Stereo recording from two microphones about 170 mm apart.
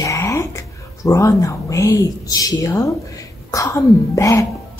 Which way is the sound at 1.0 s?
20° left (ahead or behind).